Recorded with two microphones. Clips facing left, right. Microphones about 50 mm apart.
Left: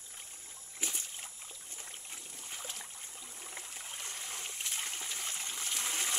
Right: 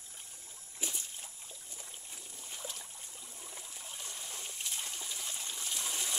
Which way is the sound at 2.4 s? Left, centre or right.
Left.